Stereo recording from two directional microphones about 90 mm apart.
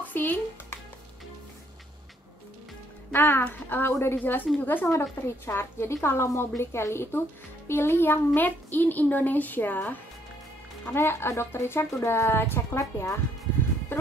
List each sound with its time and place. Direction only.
0.1 s speech: 20° left (ahead or behind)
3.1 s speech: 25° left (ahead or behind)